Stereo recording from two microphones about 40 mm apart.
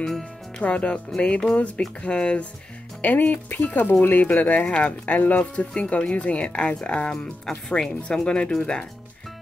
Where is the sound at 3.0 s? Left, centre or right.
Left.